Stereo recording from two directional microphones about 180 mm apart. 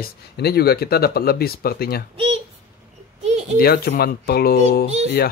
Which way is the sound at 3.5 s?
55° left (ahead or behind).